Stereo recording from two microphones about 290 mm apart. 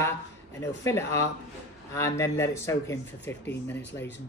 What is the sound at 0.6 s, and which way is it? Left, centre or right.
Speech, centre.